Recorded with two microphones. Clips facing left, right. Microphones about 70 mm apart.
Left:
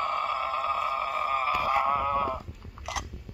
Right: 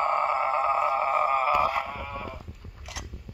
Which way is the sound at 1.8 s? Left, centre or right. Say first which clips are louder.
Left 9 dB; left.